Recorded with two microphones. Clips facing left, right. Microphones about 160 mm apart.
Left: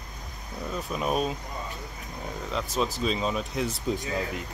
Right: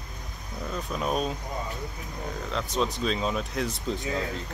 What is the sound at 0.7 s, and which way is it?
Speech, 5° left (ahead or behind).